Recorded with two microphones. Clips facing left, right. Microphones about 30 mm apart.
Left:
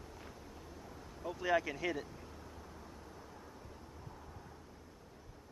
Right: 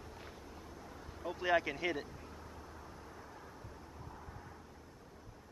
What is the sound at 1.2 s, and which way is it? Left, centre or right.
Speech, right.